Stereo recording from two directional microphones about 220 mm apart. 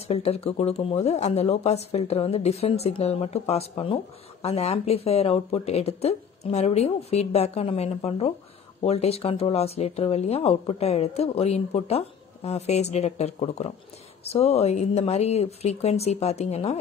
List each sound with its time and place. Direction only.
0.1 s speech: 30° left (ahead or behind)